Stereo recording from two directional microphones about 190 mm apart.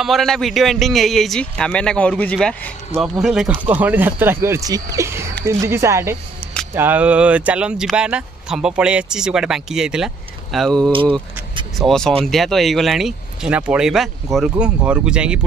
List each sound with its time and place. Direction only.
0.0 s speech: centre (ahead or behind)
10.9 s speech: 25° right (ahead or behind)
11.8 s speech: 5° left (ahead or behind)